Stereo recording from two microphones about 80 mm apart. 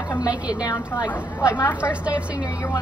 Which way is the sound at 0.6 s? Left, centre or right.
Left.